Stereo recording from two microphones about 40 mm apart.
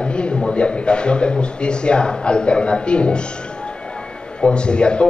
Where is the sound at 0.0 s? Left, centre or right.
Left.